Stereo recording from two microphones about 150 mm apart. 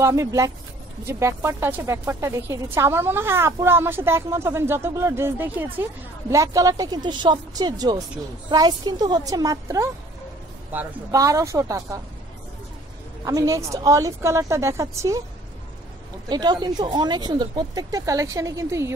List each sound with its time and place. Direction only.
0.0 s speech: 20° right (ahead or behind)
13.2 s speech: 25° right (ahead or behind)
16.3 s speech: 30° right (ahead or behind)